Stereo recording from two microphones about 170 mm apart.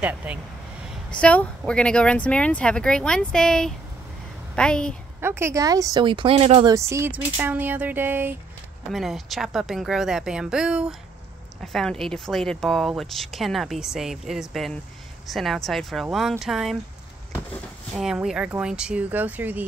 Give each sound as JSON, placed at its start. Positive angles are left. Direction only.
{"t": 0.0, "sound": "speech", "side_deg": -10}
{"t": 1.1, "sound": "a woman's voice", "side_deg": 5}
{"t": 5.2, "sound": "speech", "side_deg": -15}
{"t": 6.7, "sound": "speech", "side_deg": -15}
{"t": 8.9, "sound": "speech", "side_deg": 0}
{"t": 17.9, "sound": "speech", "side_deg": -5}